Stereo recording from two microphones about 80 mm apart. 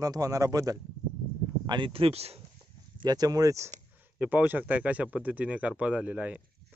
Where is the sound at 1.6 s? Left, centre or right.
Right.